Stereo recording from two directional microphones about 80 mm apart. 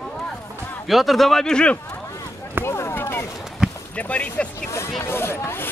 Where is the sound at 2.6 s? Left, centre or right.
Left.